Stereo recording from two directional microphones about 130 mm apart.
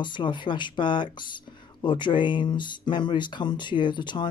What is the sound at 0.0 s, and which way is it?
Speech, 35° left (ahead or behind).